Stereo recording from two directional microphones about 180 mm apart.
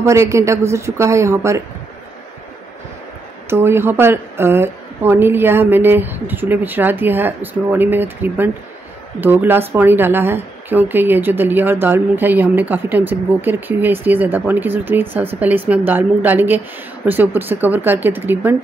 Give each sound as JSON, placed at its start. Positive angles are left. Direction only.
{"t": 0.0, "sound": "speech", "side_deg": -15}
{"t": 3.4, "sound": "speech", "side_deg": -15}